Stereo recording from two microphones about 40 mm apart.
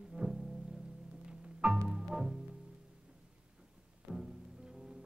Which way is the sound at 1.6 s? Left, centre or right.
Right.